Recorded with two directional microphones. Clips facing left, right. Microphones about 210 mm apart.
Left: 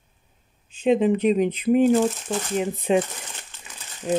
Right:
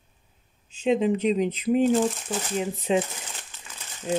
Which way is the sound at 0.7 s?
55° left (ahead or behind).